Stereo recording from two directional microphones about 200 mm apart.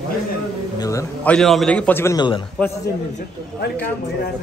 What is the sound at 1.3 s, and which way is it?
A man's voice, centre (ahead or behind).